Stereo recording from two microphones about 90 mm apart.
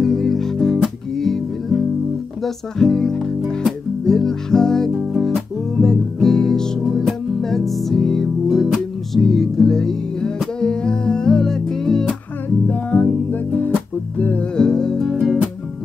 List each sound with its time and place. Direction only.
0.0 s music: 5° left (ahead or behind)
12.6 s music: 20° left (ahead or behind)
14.6 s music: 5° left (ahead or behind)